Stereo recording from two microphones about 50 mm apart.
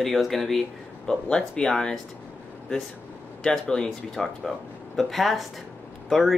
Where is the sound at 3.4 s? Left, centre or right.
Centre.